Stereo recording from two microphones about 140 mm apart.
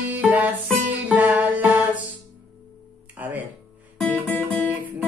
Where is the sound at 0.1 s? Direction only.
10° right (ahead or behind).